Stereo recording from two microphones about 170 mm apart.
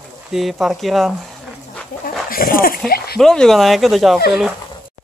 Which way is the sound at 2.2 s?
60° left (ahead or behind).